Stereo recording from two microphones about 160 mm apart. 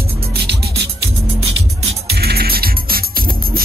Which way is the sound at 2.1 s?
80° right.